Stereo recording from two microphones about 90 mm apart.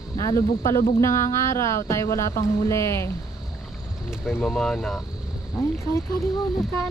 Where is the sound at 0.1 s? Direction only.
35° left (ahead or behind).